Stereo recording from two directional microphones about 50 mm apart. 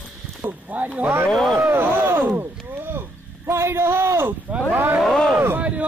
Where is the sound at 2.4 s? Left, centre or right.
Right.